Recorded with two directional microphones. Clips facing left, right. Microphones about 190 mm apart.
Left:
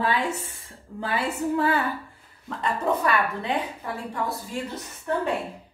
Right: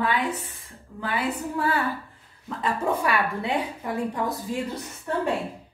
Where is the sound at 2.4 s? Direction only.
5° right (ahead or behind).